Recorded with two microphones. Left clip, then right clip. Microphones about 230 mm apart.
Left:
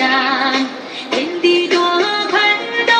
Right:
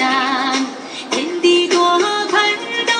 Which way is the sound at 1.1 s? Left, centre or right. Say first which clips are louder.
Even; right.